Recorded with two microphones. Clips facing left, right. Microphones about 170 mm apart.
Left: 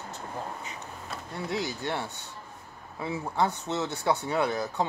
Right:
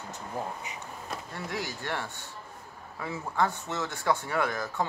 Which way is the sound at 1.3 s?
20° left (ahead or behind).